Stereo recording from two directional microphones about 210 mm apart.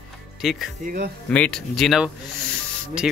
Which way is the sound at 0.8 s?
40° right (ahead or behind).